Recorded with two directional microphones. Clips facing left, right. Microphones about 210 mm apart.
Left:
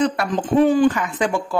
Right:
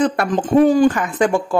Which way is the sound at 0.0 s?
45° right (ahead or behind).